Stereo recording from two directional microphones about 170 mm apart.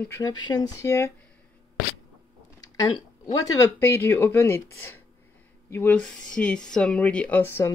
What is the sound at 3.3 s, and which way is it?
Speech, 20° left (ahead or behind).